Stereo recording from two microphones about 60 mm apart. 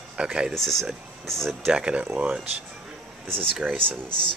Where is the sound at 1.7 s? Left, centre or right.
Centre.